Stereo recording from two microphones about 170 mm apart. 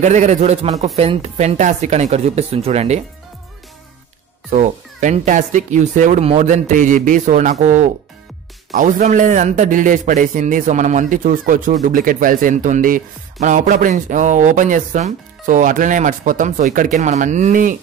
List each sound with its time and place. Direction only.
0.0 s speech: 45° right (ahead or behind)
4.5 s a man's voice: 45° right (ahead or behind)